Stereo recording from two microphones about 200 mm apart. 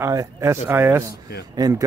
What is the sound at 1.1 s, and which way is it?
Speech, 55° left (ahead or behind).